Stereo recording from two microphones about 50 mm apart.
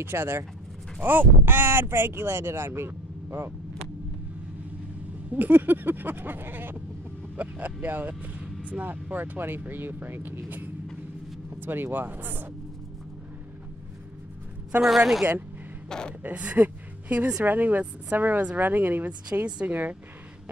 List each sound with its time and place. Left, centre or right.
0.0 s speech: right
1.0 s speech: right
5.3 s speech: right
14.8 s a woman's voice: centre
15.9 s speech: centre
16.2 s a woman's voice: right